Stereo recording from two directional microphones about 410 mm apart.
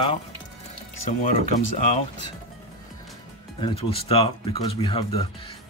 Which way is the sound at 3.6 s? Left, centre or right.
Centre.